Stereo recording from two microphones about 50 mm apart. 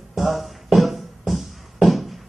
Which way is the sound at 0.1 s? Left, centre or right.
Centre.